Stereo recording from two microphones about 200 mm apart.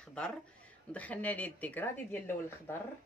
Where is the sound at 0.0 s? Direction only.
5° left (ahead or behind).